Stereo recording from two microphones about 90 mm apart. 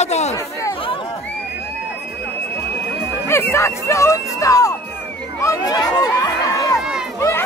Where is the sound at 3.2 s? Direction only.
30° left (ahead or behind).